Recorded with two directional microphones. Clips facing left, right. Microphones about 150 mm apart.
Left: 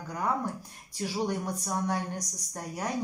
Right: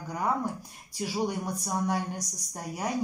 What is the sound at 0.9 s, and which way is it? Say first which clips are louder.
Speech: right 1 dB; 15° right (ahead or behind).